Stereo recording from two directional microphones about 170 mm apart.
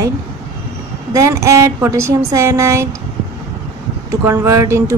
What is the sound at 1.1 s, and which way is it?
Speech, 15° right (ahead or behind).